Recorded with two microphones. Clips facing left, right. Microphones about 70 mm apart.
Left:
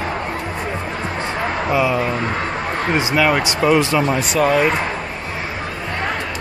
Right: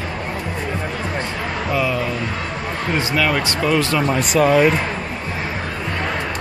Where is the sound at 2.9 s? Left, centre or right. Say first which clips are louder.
Left 3 dB; centre.